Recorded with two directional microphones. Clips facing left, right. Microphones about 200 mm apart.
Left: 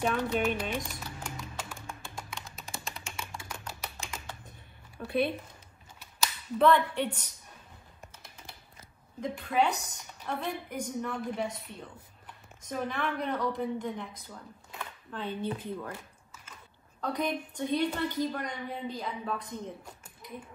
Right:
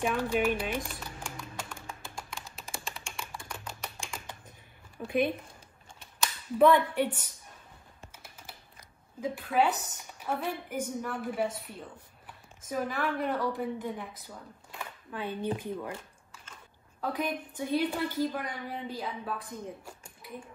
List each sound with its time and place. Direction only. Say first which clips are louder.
0.0 s a woman's voice: right 1 dB; 10° right (ahead or behind)
1.2 s music: left 1 dB; 5° left (ahead or behind)
5.0 s a woman's voice: right 1 dB; 10° right (ahead or behind)
6.6 s a woman's voice: right 2 dB; 10° right (ahead or behind)
9.2 s a woman's voice: right 1 dB; 5° right (ahead or behind)
17.0 s a woman's voice: left 1 dB; 5° right (ahead or behind)